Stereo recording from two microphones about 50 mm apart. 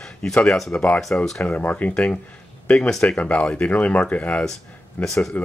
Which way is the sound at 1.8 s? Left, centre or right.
Left.